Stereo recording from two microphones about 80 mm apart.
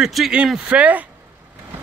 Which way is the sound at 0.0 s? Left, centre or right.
Centre.